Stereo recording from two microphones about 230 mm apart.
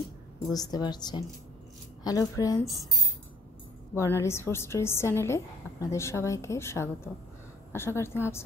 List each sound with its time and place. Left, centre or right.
0.5 s a woman's voice: centre
3.9 s a woman's voice: centre